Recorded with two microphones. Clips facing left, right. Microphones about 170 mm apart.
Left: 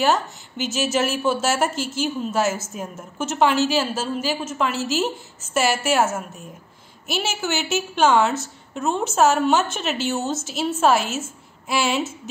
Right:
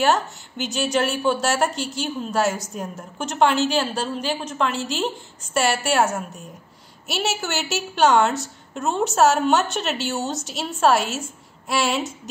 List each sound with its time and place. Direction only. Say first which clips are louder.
0.0 s a woman's voice: even; centre (ahead or behind)